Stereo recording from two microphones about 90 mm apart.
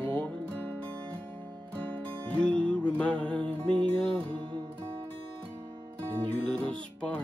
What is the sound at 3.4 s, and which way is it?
Music, 70° right (ahead or behind).